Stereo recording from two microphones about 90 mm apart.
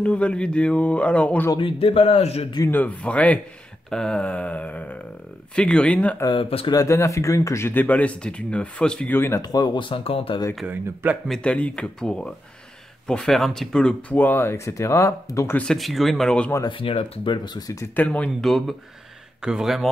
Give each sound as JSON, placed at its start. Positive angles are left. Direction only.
{"t": 0.0, "sound": "speech", "side_deg": 10}
{"t": 1.6, "sound": "speech", "side_deg": 85}
{"t": 2.7, "sound": "speech", "side_deg": 15}
{"t": 6.7, "sound": "speech", "side_deg": 35}
{"t": 9.4, "sound": "speech", "side_deg": 45}
{"t": 9.8, "sound": "speech", "side_deg": 80}
{"t": 10.7, "sound": "speech", "side_deg": -20}
{"t": 11.2, "sound": "speech", "side_deg": 10}
{"t": 14.1, "sound": "speech", "side_deg": 20}
{"t": 15.5, "sound": "speech", "side_deg": 5}
{"t": 16.6, "sound": "speech", "side_deg": 80}
{"t": 17.9, "sound": "speech", "side_deg": 15}
{"t": 18.4, "sound": "speech", "side_deg": 0}